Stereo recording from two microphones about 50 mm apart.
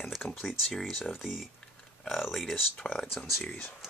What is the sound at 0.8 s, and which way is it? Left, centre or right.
Speech, centre.